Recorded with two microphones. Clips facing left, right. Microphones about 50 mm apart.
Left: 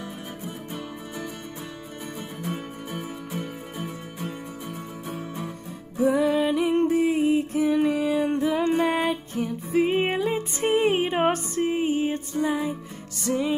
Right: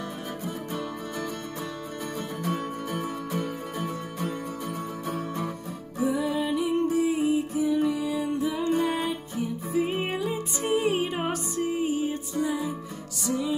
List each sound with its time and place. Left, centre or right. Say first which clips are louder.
2.4 s music: right 3 dB; centre
6.0 s music: left 5 dB; left